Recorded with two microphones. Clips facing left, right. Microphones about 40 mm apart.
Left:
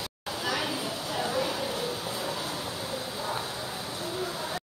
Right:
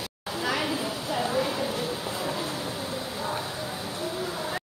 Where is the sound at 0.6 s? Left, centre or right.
Centre.